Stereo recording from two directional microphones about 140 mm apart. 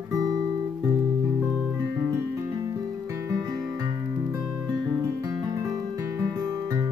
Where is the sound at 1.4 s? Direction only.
15° right (ahead or behind).